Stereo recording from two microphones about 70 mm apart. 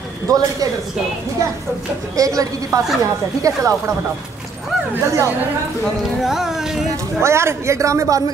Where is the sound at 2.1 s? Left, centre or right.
Right.